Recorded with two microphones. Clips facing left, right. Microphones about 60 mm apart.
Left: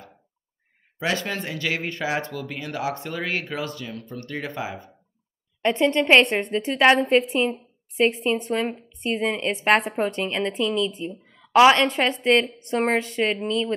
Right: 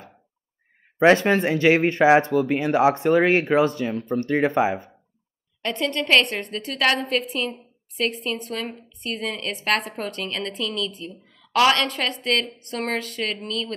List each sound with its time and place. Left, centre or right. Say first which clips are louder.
0.9 s speech: right 10 dB; right
5.6 s a woman's voice: left 5 dB; left